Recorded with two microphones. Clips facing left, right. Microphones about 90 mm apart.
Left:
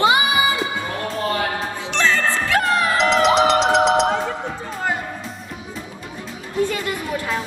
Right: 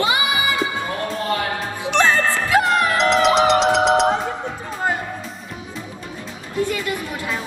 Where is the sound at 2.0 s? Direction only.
20° right (ahead or behind).